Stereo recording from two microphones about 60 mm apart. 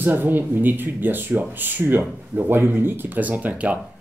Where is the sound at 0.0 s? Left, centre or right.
Right.